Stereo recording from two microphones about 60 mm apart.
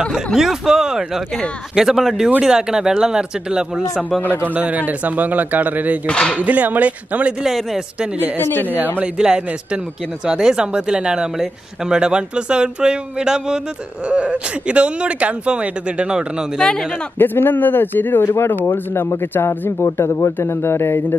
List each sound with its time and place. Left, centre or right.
0.1 s speech: centre
4.2 s a man's voice: left
4.6 s speech: right
6.0 s speech: centre
6.3 s speech: right
7.4 s a man's voice: centre
8.4 s a man's voice: left
8.7 s speech: right
9.0 s speech: centre
16.5 s speech: centre
17.2 s a man's voice: left
19.8 s a man's voice: left